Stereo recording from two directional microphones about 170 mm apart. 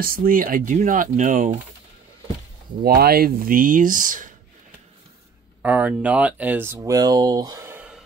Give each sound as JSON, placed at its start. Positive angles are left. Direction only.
{"t": 0.0, "sound": "speech", "side_deg": -55}
{"t": 2.8, "sound": "speech", "side_deg": -65}
{"t": 5.6, "sound": "speech", "side_deg": -10}